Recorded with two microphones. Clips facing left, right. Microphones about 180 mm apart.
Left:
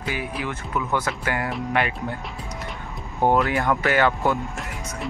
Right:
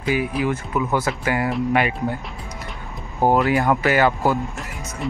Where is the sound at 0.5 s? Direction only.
10° right (ahead or behind).